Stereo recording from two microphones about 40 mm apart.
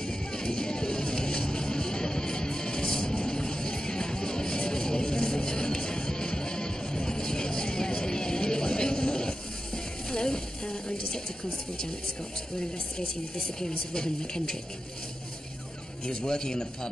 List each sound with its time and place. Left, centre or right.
0.0 s music: centre
10.1 s a sound: centre
13.6 s speech: centre
16.1 s speech: centre